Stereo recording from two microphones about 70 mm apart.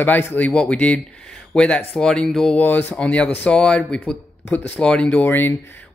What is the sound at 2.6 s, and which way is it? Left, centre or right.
Speech, left.